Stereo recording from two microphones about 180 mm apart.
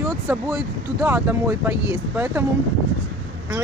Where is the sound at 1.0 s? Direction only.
10° right (ahead or behind).